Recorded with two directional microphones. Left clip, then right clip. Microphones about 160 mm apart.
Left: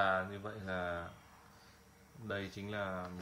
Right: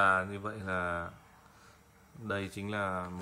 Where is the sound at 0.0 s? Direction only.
40° right (ahead or behind).